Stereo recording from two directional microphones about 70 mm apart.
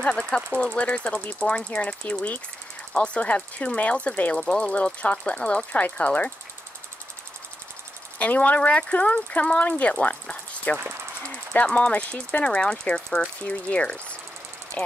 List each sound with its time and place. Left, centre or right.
0.0 s speech: centre
8.2 s speech: left